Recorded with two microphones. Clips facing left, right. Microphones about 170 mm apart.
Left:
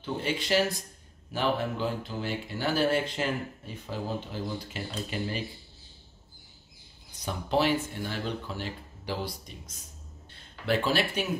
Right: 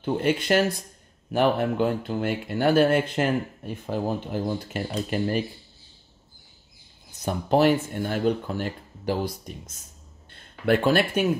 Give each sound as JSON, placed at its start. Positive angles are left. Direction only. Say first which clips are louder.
{"t": 0.0, "sound": "speech", "louder": "right 8 dB", "side_deg": -55}
{"t": 7.2, "sound": "speech", "louder": "right 6 dB", "side_deg": -50}